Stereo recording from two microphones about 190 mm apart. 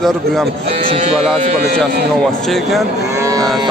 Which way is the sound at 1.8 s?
Centre (ahead or behind).